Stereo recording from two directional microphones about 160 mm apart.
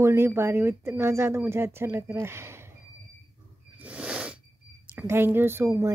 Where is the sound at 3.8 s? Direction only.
5° right (ahead or behind).